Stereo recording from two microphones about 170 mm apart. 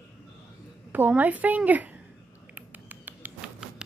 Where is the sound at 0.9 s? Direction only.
10° right (ahead or behind).